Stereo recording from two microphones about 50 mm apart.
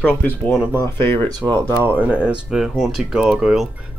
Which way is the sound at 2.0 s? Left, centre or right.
Right.